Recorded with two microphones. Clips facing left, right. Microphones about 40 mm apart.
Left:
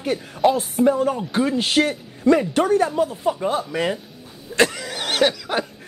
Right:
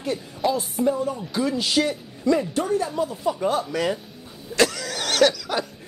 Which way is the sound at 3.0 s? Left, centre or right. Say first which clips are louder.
Left 3 dB; left.